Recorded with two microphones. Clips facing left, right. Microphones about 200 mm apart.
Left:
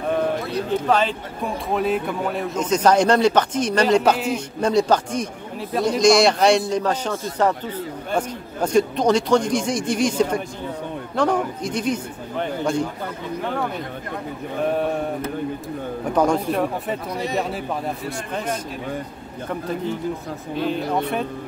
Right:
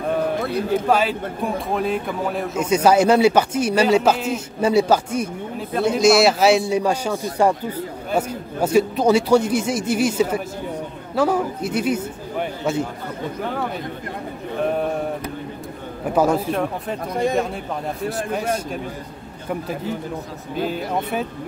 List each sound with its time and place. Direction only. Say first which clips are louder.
0.8 s speech: right 1 dB; 10° right (ahead or behind)
16.2 s speech: right 1 dB; 5° right (ahead or behind)
17.1 s speech: right 8 dB; 50° right (ahead or behind)
18.3 s speech: right 2 dB; 10° right (ahead or behind)
20.6 s speech: left 2 dB; 5° right (ahead or behind)